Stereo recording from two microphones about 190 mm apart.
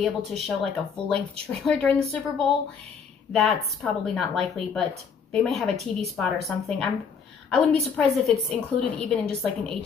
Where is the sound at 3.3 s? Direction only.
Centre (ahead or behind).